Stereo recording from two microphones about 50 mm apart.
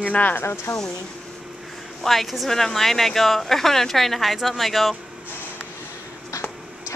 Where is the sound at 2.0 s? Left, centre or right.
Centre.